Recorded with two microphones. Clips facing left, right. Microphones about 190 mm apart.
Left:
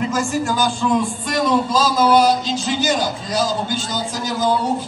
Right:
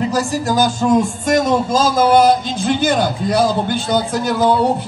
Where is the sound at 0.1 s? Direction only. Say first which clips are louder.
Right 3 dB; 35° right (ahead or behind).